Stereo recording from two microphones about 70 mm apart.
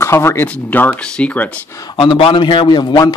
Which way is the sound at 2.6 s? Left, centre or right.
Left.